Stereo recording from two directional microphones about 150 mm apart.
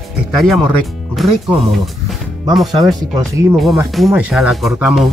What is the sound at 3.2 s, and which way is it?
Speech, 20° right (ahead or behind).